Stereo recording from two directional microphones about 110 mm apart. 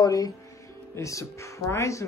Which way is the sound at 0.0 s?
35° left (ahead or behind).